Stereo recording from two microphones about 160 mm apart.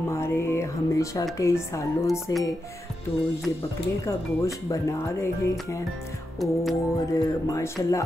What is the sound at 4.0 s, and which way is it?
Speech, 20° left (ahead or behind).